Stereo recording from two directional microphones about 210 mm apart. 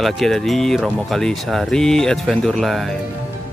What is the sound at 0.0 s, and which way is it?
Music, centre (ahead or behind).